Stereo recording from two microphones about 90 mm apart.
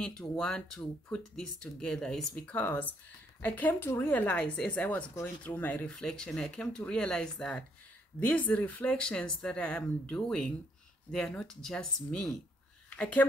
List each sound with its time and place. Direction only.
0.0 s speech: 10° left (ahead or behind)
5.9 s speech: 5° left (ahead or behind)